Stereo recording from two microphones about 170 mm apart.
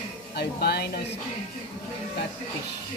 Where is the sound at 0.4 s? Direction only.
70° left (ahead or behind).